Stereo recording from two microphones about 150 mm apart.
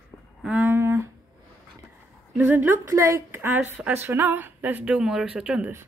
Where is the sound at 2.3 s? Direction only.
10° right (ahead or behind).